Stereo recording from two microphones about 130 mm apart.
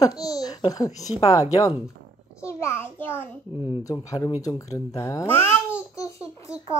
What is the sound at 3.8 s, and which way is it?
Speech, 25° left (ahead or behind).